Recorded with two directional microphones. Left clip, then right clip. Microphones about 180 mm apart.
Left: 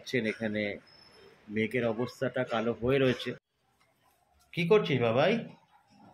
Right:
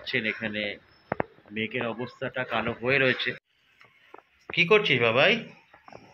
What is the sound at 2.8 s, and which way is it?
Speech, 20° left (ahead or behind).